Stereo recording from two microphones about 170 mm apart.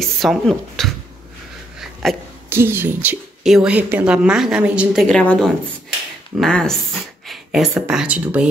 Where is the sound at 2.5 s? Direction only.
15° right (ahead or behind).